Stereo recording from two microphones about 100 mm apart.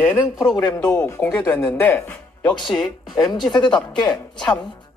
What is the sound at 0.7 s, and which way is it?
Speech, 15° left (ahead or behind).